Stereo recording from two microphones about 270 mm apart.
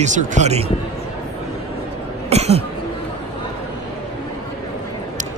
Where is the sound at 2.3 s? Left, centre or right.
Right.